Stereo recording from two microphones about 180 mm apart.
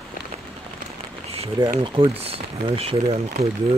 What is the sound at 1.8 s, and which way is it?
Speech, 30° right (ahead or behind).